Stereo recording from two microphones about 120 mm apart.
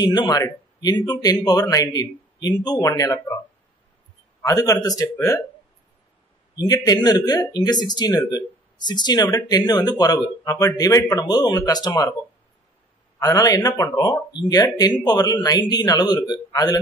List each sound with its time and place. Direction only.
0.1 s speech: 35° left (ahead or behind)
4.4 s speech: 30° left (ahead or behind)
6.6 s speech: 30° left (ahead or behind)
13.2 s speech: 30° left (ahead or behind)